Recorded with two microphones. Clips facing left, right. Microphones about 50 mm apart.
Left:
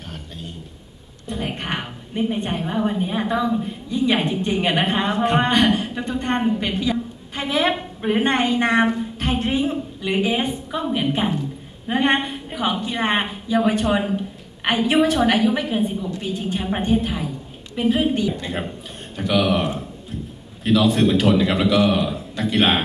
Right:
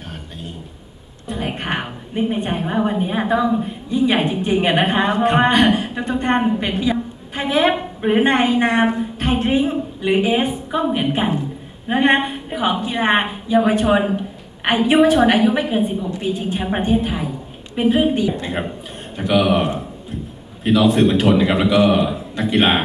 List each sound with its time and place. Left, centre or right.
1.3 s a woman's voice: centre
16.0 s a woman's voice: right